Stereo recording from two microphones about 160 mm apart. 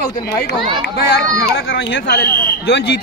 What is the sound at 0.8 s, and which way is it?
Speech, 90° left.